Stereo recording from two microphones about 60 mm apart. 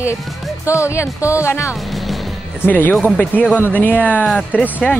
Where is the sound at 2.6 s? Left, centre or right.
Left.